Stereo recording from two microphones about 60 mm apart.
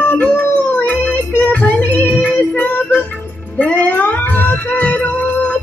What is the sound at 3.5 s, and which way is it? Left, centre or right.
Music, left.